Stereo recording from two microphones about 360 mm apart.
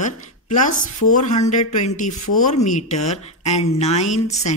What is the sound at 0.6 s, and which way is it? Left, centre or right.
Speech, left.